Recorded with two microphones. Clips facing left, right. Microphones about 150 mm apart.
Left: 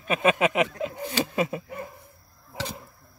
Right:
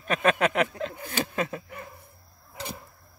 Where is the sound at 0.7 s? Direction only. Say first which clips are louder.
Left 3 dB; 10° left (ahead or behind).